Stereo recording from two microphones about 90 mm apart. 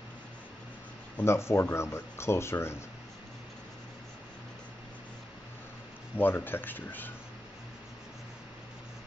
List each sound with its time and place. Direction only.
1.2 s speech: 30° left (ahead or behind)
6.1 s speech: 20° left (ahead or behind)